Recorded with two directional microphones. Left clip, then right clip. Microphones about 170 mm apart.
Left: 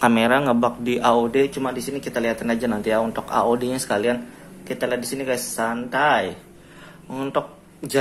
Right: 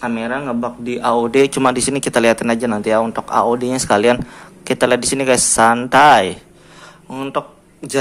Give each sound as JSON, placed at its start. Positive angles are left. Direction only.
{"t": 0.0, "sound": "speech", "side_deg": 10}
{"t": 1.3, "sound": "speech", "side_deg": -30}
{"t": 3.7, "sound": "speech", "side_deg": -30}
{"t": 7.1, "sound": "speech", "side_deg": -15}